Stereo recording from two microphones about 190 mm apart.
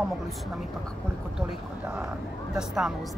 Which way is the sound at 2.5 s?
5° right (ahead or behind).